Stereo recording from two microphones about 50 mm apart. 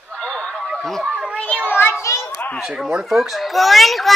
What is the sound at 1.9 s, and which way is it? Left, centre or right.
Children playing, left.